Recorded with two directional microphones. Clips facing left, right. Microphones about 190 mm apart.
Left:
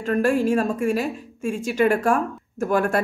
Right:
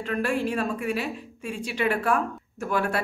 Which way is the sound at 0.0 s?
45° left (ahead or behind).